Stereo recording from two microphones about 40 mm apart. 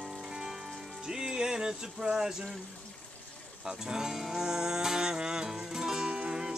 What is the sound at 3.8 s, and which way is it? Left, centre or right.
Music, centre.